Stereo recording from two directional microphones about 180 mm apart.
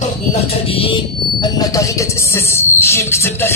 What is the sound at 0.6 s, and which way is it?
A man's voice, 30° left (ahead or behind).